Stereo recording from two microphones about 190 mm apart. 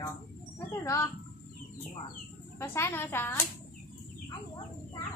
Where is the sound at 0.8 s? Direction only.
15° left (ahead or behind).